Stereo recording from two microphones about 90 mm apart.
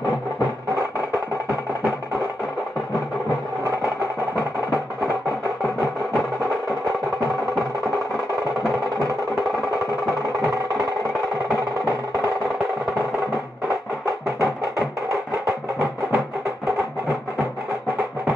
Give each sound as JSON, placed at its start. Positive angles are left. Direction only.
{"t": 14.4, "sound": "music", "side_deg": -35}